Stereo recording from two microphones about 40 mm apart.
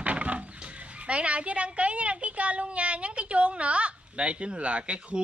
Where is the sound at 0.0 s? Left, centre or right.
Right.